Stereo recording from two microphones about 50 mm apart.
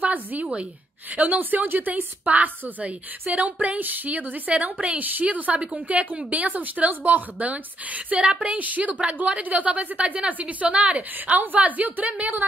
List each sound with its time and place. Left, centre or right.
0.0 s a woman's voice: right